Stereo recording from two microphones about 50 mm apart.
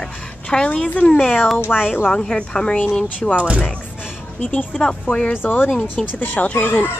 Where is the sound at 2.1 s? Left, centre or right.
Centre.